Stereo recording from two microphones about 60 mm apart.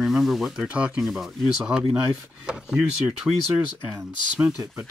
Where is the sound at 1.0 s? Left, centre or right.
Centre.